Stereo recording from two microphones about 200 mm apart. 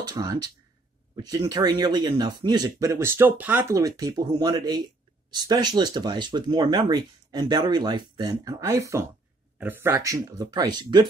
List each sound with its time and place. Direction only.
0.0 s speech: 20° right (ahead or behind)